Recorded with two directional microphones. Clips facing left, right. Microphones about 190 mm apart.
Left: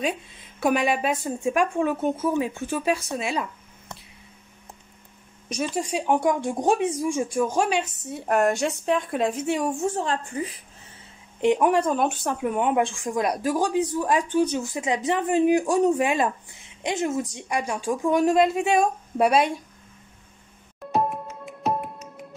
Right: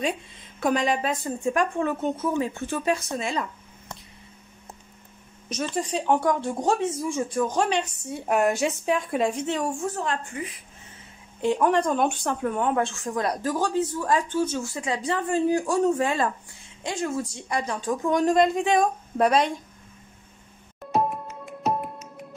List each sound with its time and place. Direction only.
0.0 s speech: 5° left (ahead or behind)
5.6 s speech: 10° left (ahead or behind)
9.8 s a woman's voice: 30° left (ahead or behind)
11.4 s speech: 15° left (ahead or behind)
20.9 s music: centre (ahead or behind)